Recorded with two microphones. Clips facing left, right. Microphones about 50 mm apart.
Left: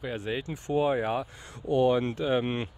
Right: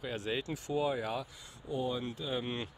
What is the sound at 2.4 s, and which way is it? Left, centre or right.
Speech, left.